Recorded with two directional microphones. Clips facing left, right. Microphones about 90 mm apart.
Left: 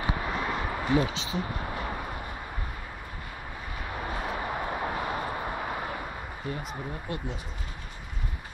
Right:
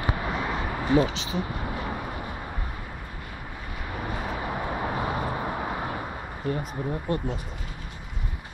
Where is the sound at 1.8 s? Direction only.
5° right (ahead or behind).